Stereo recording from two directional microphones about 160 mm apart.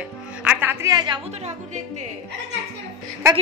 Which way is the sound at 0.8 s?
25° right (ahead or behind).